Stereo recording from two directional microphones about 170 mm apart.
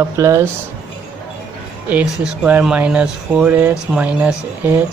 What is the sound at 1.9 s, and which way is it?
Speech, 5° right (ahead or behind).